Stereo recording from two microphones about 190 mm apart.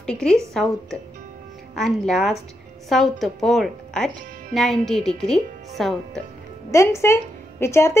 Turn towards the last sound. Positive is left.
turn(degrees=15)  # may be behind; listen again after turning